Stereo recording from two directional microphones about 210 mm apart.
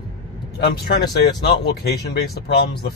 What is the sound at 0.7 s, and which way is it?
Speech, 50° left (ahead or behind).